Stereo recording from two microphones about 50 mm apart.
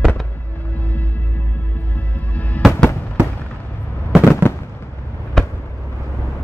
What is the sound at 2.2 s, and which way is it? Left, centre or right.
Music, left.